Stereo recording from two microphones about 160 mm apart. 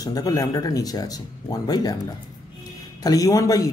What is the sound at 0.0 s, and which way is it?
A man's voice, 20° left (ahead or behind).